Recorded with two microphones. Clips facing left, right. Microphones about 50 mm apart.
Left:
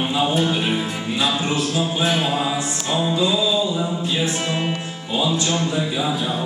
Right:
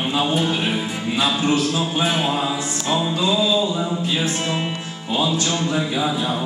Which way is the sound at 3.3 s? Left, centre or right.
Centre.